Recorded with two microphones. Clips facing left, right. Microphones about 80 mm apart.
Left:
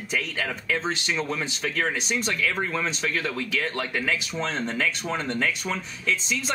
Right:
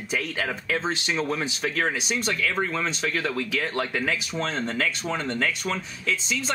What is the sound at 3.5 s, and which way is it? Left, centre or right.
Speech, centre.